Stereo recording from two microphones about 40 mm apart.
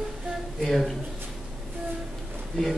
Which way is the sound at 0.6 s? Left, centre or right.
Centre.